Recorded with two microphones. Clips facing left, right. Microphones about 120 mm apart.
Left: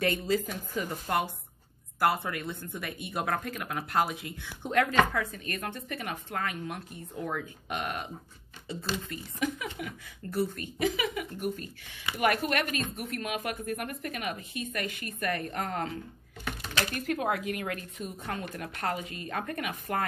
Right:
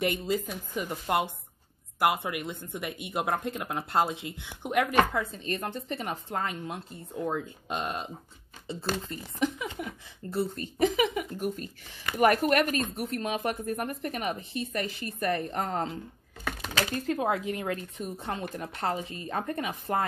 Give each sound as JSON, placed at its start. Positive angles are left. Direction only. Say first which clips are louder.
{"t": 0.0, "sound": "a woman's voice", "louder": "even", "side_deg": -15}
{"t": 9.4, "sound": "speech", "louder": "right 3 dB", "side_deg": -30}
{"t": 16.9, "sound": "speech", "louder": "right 2 dB", "side_deg": -25}